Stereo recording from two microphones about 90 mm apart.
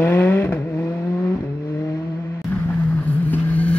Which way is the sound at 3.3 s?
15° left (ahead or behind).